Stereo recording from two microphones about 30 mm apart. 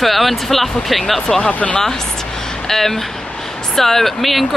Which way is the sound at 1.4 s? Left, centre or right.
Left.